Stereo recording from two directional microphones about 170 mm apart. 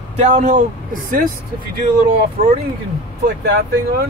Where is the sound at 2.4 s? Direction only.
40° right (ahead or behind).